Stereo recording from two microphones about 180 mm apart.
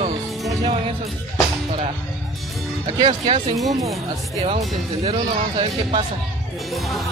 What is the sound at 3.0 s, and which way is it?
Speech, 30° right (ahead or behind).